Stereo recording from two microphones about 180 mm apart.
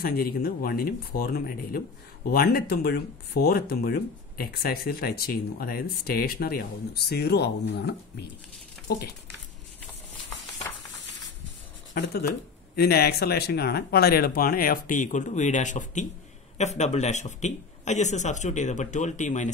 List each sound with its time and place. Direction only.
0.0 s speech: 55° left (ahead or behind)
12.0 s a man's voice: 60° left (ahead or behind); by 19.5 s 40° left (ahead or behind)